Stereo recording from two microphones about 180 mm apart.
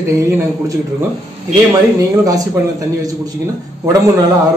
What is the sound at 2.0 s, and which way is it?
Speech, 20° right (ahead or behind).